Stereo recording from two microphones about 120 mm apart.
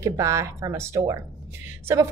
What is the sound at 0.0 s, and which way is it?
A woman's voice, 25° right (ahead or behind).